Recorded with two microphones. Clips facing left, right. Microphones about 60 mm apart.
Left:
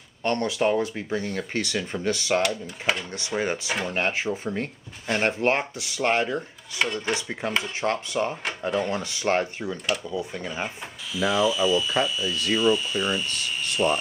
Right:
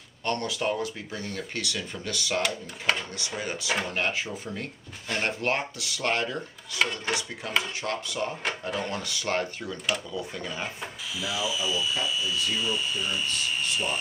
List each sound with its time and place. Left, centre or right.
0.2 s speech: left
2.4 s speech: centre
3.1 s speech: left
6.8 s speech: centre
7.2 s speech: left
8.5 s speech: centre
8.9 s speech: left
11.1 s speech: centre